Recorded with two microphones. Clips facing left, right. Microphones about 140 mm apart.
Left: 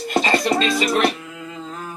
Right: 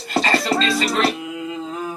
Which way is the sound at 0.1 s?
20° left (ahead or behind).